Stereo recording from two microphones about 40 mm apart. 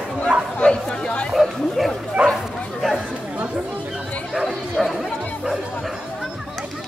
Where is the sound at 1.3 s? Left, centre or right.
Centre.